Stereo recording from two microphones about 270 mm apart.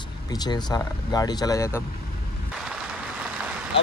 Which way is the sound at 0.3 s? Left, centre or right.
Centre.